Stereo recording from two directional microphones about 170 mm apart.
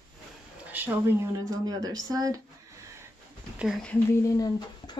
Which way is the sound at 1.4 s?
20° right (ahead or behind).